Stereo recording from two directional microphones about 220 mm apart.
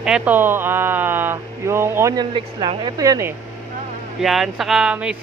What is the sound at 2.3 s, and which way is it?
Speech, 25° right (ahead or behind).